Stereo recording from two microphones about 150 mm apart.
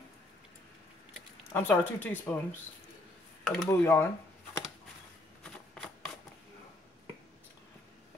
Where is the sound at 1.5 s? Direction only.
10° left (ahead or behind).